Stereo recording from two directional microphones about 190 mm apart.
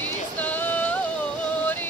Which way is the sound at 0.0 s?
10° left (ahead or behind).